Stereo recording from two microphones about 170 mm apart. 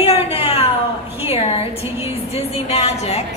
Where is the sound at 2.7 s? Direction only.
40° left (ahead or behind).